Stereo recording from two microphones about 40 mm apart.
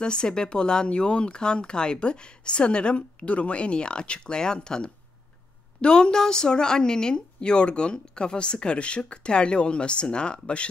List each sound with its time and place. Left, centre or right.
0.0 s speech: left